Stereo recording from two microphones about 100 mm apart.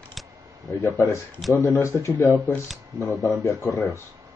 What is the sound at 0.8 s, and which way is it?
Speech, 25° left (ahead or behind).